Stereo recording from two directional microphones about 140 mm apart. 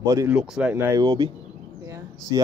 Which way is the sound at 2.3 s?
30° right (ahead or behind).